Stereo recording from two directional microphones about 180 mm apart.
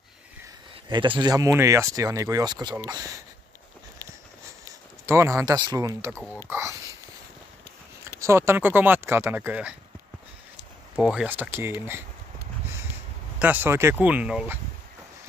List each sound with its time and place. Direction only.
0.8 s speech: 25° right (ahead or behind)
5.0 s speech: 15° right (ahead or behind)
6.5 s a sound: 15° right (ahead or behind)
8.2 s speech: 15° right (ahead or behind)
11.0 s speech: 5° right (ahead or behind)
13.4 s speech: 10° right (ahead or behind)